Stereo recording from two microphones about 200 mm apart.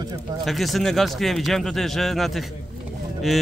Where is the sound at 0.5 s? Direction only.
Centre (ahead or behind).